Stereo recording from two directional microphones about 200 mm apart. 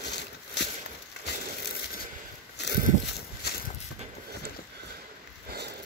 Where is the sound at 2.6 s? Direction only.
60° left (ahead or behind).